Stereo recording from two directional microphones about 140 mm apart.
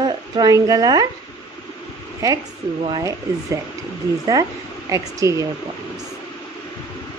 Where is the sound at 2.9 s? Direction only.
25° right (ahead or behind).